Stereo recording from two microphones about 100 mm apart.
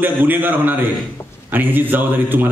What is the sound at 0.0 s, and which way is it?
A man's voice, 20° right (ahead or behind).